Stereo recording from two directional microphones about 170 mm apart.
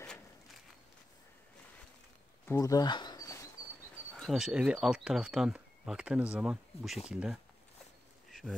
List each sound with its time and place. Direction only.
2.4 s a sound: 15° left (ahead or behind)
4.2 s speech: centre (ahead or behind)
8.3 s duck: centre (ahead or behind)